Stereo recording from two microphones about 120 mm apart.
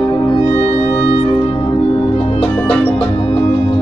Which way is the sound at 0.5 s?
55° left (ahead or behind).